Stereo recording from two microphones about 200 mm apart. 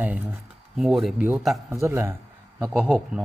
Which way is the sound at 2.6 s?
5° right (ahead or behind).